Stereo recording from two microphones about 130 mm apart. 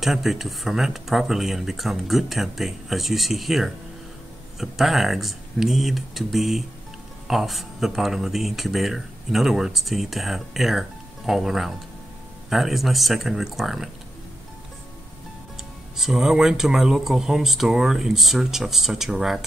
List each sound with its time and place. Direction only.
0.0 s speech: centre (ahead or behind)
16.0 s speech: 5° right (ahead or behind)